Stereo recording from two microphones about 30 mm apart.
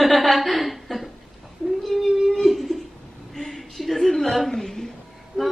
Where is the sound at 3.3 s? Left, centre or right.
Centre.